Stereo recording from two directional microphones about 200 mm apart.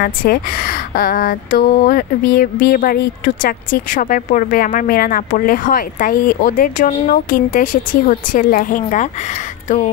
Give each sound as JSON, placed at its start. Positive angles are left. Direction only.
{"t": 0.0, "sound": "speech", "side_deg": 45}